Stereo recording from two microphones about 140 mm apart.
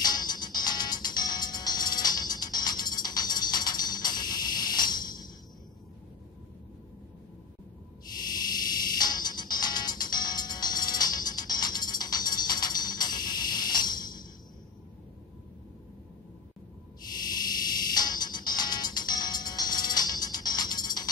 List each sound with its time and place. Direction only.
0.0 s music: 30° left (ahead or behind)
8.3 s music: 30° left (ahead or behind)
17.3 s music: 30° left (ahead or behind)